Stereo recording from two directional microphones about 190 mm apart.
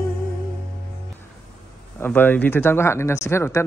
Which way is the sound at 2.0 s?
10° left (ahead or behind).